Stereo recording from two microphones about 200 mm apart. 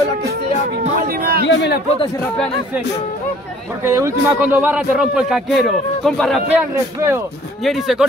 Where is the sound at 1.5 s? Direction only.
60° left (ahead or behind).